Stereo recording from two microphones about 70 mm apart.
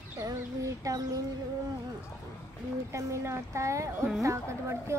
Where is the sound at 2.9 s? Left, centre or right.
Right.